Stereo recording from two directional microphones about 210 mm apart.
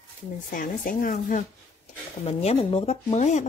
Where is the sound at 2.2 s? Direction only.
30° left (ahead or behind).